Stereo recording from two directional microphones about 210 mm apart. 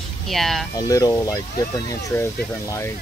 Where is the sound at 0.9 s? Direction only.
15° left (ahead or behind).